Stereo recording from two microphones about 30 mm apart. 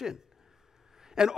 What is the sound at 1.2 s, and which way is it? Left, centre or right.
Speech, right.